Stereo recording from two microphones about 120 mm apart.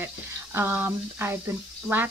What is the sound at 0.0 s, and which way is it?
Speech, 20° right (ahead or behind).